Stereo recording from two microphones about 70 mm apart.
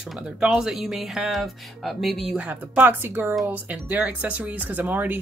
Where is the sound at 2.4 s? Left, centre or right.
Right.